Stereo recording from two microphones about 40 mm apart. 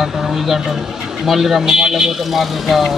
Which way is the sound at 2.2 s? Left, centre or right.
Centre.